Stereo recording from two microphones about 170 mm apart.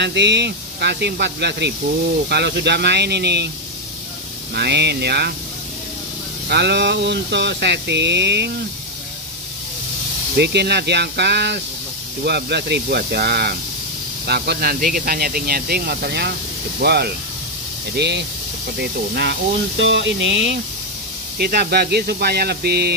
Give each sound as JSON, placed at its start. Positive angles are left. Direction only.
{"t": 0.0, "sound": "speech", "side_deg": -90}
{"t": 4.6, "sound": "speech", "side_deg": -80}
{"t": 6.5, "sound": "a sound", "side_deg": -85}
{"t": 10.3, "sound": "speech", "side_deg": -75}
{"t": 19.8, "sound": "a sound", "side_deg": -90}
{"t": 21.4, "sound": "speech", "side_deg": -70}